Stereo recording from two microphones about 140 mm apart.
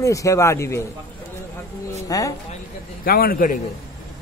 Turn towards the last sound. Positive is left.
turn(degrees=80)